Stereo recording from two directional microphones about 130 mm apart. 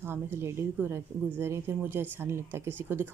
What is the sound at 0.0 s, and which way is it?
Speech, 15° right (ahead or behind).